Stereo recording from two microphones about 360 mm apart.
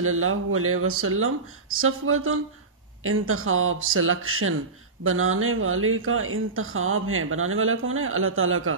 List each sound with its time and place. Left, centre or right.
0.0 s speech: right